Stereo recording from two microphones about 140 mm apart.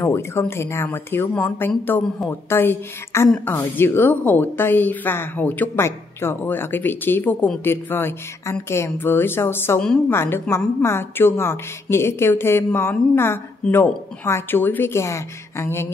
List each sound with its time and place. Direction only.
0.0 s a woman's voice: 20° left (ahead or behind)